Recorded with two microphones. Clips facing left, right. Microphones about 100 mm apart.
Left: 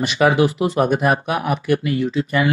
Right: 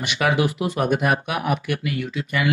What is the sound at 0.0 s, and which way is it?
Speech, 35° left (ahead or behind).